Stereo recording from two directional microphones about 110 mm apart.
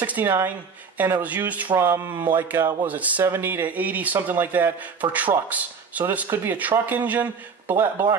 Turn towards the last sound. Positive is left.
turn(degrees=-15)  # may be behind; listen again after turning